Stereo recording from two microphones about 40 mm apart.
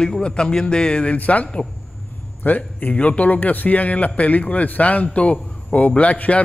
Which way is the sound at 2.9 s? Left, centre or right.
Left.